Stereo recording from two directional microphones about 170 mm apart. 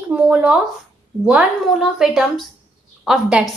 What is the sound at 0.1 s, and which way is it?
A woman's voice, 5° right (ahead or behind).